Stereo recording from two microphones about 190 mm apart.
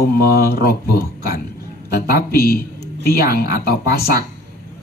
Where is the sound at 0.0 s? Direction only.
55° left (ahead or behind).